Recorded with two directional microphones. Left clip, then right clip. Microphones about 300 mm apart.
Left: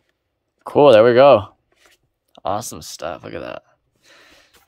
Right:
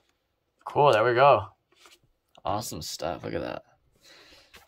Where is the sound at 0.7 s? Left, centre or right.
Left.